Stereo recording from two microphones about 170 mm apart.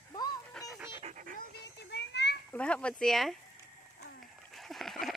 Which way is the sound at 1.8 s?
80° left.